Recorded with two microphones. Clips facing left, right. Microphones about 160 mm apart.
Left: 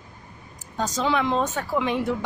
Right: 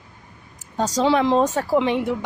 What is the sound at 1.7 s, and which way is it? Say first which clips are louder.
Speech: right 4 dB; 20° right (ahead or behind).